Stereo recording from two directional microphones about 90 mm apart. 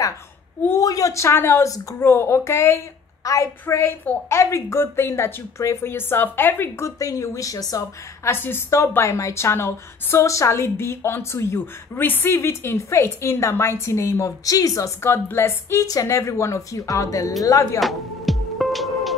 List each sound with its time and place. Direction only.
0.7 s a woman's voice: 40° left (ahead or behind)
3.6 s a woman's voice: 25° left (ahead or behind)
7.0 s a woman's voice: 40° left (ahead or behind)
8.3 s a woman's voice: 25° left (ahead or behind)
15.0 s a woman's voice: 25° left (ahead or behind)
17.7 s music: centre (ahead or behind)